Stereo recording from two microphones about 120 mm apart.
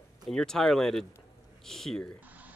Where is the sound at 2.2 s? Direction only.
15° right (ahead or behind).